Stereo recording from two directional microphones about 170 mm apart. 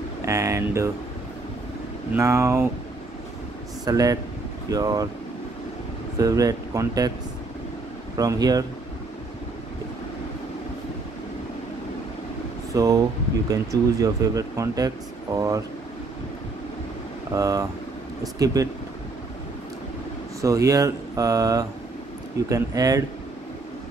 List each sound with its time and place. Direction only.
0.2 s speech: 15° right (ahead or behind)
2.1 s speech: 15° right (ahead or behind)
3.8 s speech: 20° right (ahead or behind)
6.1 s speech: 20° right (ahead or behind)
8.2 s speech: 20° right (ahead or behind)
12.7 s speech: 20° right (ahead or behind)
17.3 s speech: 20° right (ahead or behind)
20.4 s speech: 20° right (ahead or behind)